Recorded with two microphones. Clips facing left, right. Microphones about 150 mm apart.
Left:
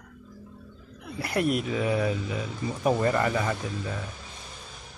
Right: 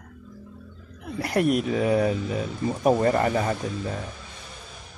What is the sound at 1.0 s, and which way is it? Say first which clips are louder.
Speech: right 4 dB; 45° right (ahead or behind).